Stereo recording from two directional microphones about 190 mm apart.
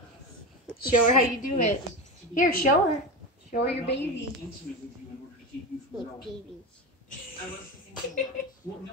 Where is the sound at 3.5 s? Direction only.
60° left (ahead or behind).